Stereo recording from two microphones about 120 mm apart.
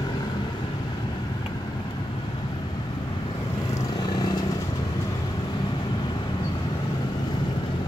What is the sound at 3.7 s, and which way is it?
Vehicle, 30° left (ahead or behind).